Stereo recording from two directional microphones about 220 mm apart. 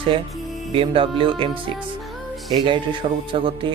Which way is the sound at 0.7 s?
25° right (ahead or behind).